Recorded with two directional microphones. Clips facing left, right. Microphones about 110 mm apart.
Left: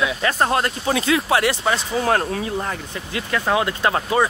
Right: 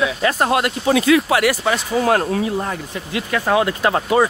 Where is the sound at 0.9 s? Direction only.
30° left (ahead or behind).